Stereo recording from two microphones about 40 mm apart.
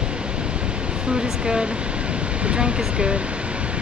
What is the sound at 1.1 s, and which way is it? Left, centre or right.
Speech, right.